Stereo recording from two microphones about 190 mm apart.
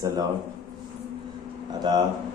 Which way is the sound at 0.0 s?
20° right (ahead or behind).